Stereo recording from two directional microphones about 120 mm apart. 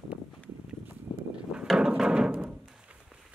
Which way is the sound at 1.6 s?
5° right (ahead or behind).